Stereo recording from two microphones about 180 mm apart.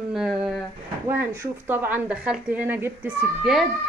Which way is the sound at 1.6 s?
10° right (ahead or behind).